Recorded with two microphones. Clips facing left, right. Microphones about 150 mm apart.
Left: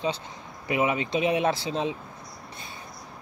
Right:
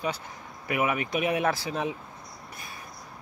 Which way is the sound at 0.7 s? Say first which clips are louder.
Left 2 dB; 25° left (ahead or behind).